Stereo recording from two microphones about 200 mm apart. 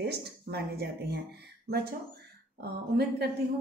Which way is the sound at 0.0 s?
55° right (ahead or behind).